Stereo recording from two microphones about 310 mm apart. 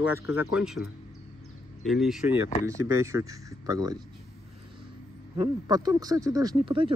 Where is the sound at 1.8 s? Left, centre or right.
Centre.